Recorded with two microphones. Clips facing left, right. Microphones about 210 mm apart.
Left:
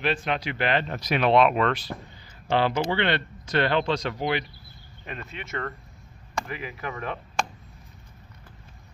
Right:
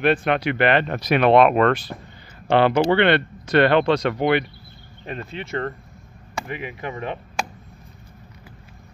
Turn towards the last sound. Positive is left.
turn(degrees=-25)  # may be behind; listen again after turning